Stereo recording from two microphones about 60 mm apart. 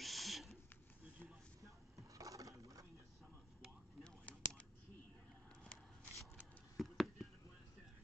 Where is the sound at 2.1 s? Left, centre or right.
Right.